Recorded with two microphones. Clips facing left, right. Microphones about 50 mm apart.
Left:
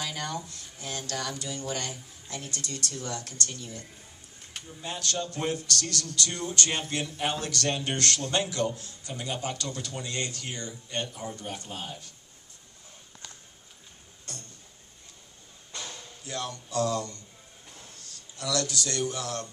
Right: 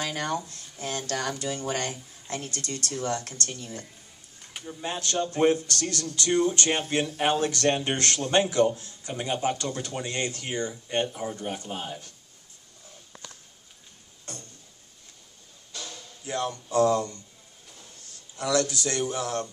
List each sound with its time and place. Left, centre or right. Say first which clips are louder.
0.0 s a man's voice: right 4 dB; right
15.7 s bow-wow: even; left
16.3 s a man's voice: right 6 dB; right
18.4 s a man's voice: right 5 dB; right